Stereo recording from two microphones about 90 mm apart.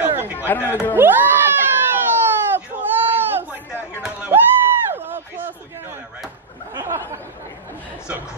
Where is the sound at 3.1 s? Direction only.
25° right (ahead or behind).